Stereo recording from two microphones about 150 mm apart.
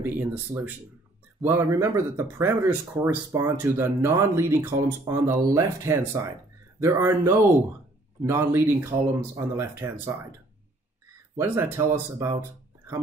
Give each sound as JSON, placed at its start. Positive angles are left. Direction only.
{"t": 0.0, "sound": "speech", "side_deg": -15}
{"t": 11.3, "sound": "speech", "side_deg": -15}